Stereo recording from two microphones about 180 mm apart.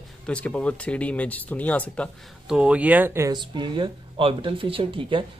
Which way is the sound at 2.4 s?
5° right (ahead or behind).